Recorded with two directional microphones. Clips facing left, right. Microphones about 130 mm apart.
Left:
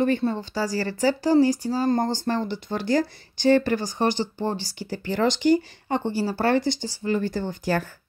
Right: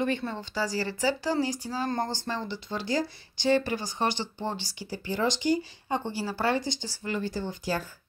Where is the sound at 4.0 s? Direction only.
40° left (ahead or behind).